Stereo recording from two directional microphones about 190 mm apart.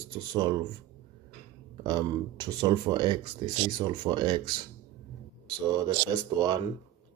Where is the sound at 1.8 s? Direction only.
25° right (ahead or behind).